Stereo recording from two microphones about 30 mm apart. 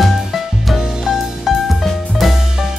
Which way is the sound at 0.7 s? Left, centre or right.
Right.